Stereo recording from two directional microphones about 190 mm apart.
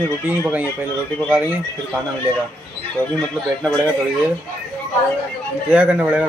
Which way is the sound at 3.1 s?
5° left (ahead or behind).